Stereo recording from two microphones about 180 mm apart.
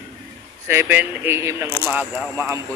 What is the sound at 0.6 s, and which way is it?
A man's voice, 10° right (ahead or behind).